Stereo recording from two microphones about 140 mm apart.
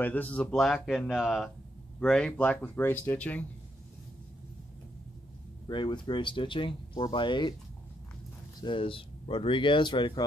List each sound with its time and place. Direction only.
0.0 s speech: 10° left (ahead or behind)
5.7 s speech: 35° left (ahead or behind)
8.5 s speech: 35° left (ahead or behind)